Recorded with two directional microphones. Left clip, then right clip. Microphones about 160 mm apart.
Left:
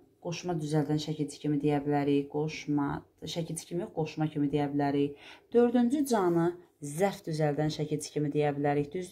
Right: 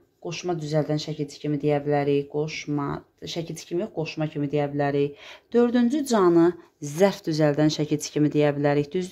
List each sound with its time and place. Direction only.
0.2 s speech: 30° right (ahead or behind)